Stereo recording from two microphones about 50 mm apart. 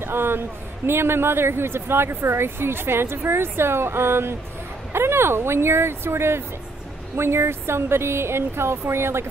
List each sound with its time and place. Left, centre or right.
0.0 s a man's voice: right